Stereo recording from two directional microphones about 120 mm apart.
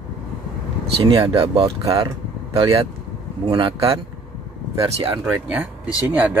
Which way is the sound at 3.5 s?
40° right (ahead or behind).